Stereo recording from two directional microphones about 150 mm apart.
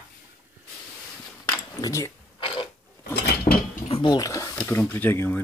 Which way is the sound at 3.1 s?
85° left.